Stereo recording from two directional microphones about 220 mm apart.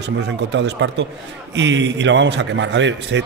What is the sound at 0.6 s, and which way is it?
A man's voice, 55° right (ahead or behind).